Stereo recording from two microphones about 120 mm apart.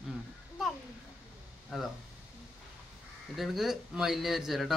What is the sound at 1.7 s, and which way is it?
Speech, 5° right (ahead or behind).